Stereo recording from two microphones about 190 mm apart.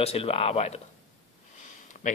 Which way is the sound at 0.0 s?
30° left (ahead or behind).